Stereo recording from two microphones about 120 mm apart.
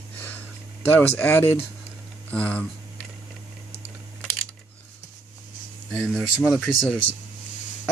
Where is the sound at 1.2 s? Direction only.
15° left (ahead or behind).